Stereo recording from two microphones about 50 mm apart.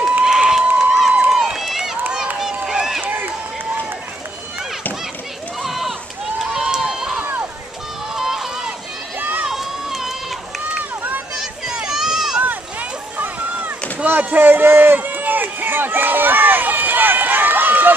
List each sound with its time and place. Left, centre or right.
0.2 s crowd: centre
1.3 s run: centre
3.0 s run: right
5.6 s run: centre
10.8 s run: right
11.3 s a sound: centre
13.2 s a sound: right
14.0 s run: right